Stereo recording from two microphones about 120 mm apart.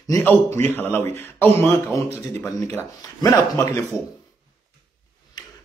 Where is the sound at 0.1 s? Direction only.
20° left (ahead or behind).